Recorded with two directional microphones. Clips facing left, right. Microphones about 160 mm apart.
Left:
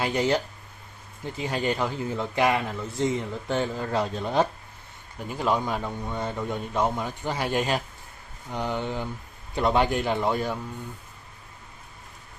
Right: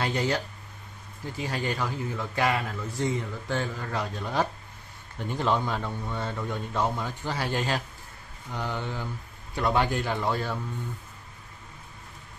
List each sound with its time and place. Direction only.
0.0 s a man's voice: 20° left (ahead or behind)
1.4 s a man's voice: 20° left (ahead or behind)
5.2 s a man's voice: 5° left (ahead or behind)